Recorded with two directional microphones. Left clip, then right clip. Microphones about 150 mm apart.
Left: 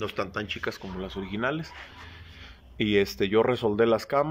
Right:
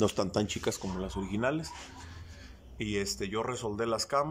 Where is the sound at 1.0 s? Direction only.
10° right (ahead or behind).